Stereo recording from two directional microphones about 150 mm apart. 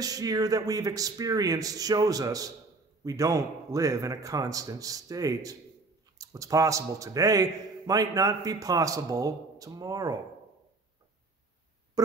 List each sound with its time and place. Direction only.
0.0 s a man's voice: 25° right (ahead or behind)